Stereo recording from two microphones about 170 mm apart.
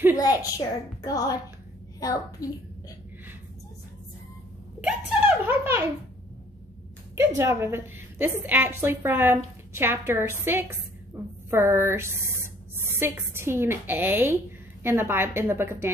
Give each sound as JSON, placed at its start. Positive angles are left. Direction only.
{"t": 0.2, "sound": "a woman's voice", "side_deg": 20}
{"t": 4.8, "sound": "a sound", "side_deg": -10}
{"t": 7.2, "sound": "a woman's voice", "side_deg": -15}